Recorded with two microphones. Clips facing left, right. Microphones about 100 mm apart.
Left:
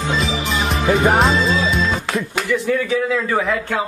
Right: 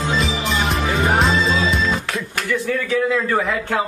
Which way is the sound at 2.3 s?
15° left (ahead or behind).